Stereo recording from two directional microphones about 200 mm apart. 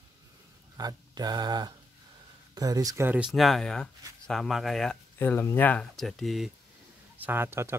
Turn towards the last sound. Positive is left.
turn(degrees=-10)  # may be behind; listen again after turning